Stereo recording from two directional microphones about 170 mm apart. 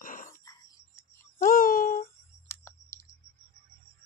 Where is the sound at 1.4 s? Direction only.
55° left (ahead or behind).